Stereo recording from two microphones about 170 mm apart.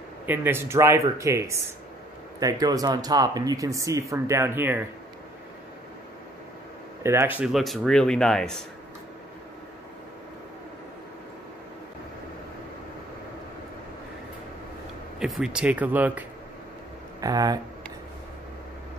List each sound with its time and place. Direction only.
0.3 s speech: 15° right (ahead or behind)
7.0 s speech: 15° right (ahead or behind); by 8.5 s 5° left (ahead or behind)
15.1 s speech: centre (ahead or behind)
17.2 s speech: 20° right (ahead or behind)